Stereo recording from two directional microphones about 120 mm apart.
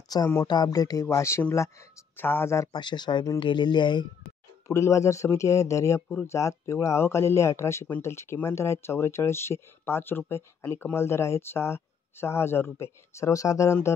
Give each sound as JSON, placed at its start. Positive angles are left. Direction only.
{"t": 0.1, "sound": "speech", "side_deg": 35}
{"t": 2.7, "sound": "speech", "side_deg": 40}
{"t": 4.6, "sound": "speech", "side_deg": 25}